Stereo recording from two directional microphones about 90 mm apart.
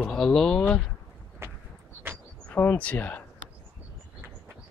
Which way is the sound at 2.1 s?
25° right (ahead or behind).